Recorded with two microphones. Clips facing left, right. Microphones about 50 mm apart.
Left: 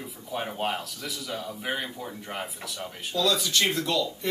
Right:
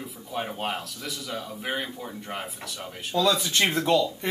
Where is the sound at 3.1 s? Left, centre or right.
Right.